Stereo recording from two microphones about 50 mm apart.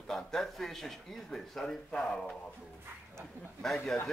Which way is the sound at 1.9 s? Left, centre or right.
Left.